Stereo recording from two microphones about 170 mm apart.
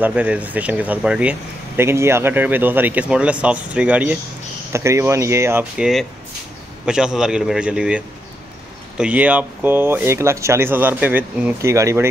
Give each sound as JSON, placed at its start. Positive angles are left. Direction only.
{"t": 0.0, "sound": "a man's voice", "side_deg": -10}